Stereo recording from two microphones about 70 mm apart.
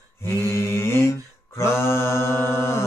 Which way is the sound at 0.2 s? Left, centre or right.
Left.